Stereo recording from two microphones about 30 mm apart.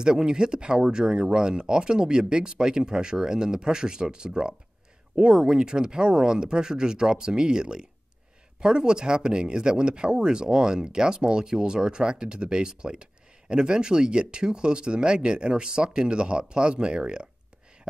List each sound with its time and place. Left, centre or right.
0.0 s speech: right